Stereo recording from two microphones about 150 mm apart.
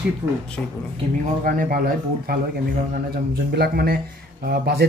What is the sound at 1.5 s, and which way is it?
Speech, 70° right (ahead or behind).